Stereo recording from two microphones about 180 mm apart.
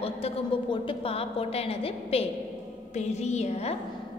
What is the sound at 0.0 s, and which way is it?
A woman's voice, 30° left (ahead or behind).